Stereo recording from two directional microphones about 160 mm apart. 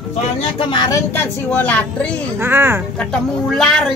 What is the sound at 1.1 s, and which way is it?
Speech, 10° left (ahead or behind).